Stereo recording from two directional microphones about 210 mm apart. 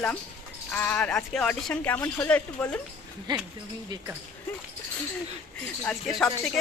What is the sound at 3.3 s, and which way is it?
Speech, 20° right (ahead or behind).